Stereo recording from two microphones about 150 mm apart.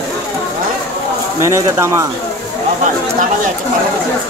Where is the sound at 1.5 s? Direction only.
20° right (ahead or behind).